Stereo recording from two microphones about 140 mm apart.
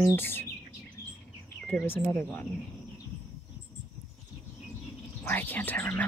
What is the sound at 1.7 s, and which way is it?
Speech, 15° left (ahead or behind).